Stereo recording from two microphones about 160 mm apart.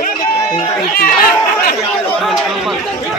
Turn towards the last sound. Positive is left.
turn(degrees=65)  # may be behind; listen again after turning